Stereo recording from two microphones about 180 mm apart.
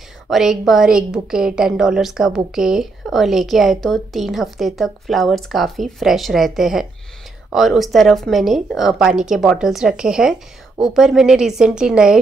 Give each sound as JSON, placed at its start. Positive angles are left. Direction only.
{"t": 0.3, "sound": "a woman's voice", "side_deg": 0}